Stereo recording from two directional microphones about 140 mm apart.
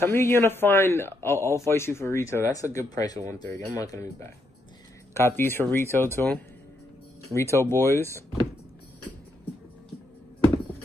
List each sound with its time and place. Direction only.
0.0 s a man's voice: 15° left (ahead or behind)
7.3 s speech: 20° left (ahead or behind)